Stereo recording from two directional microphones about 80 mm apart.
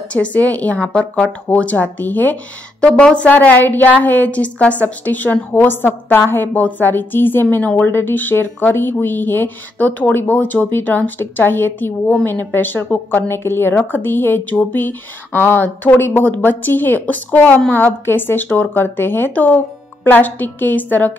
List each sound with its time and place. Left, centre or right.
0.1 s speech: centre